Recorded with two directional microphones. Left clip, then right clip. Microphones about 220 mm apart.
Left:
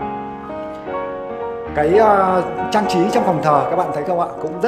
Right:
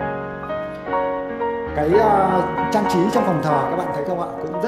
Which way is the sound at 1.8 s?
15° left (ahead or behind).